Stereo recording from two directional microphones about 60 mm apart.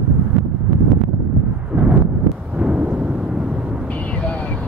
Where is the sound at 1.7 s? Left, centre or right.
Right.